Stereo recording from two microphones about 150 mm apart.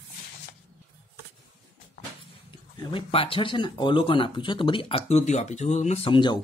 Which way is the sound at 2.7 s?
35° left (ahead or behind).